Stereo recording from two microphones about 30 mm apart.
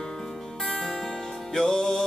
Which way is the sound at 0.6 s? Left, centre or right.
Centre.